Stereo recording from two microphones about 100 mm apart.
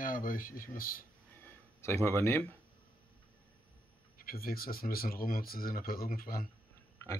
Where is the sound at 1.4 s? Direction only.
25° left (ahead or behind).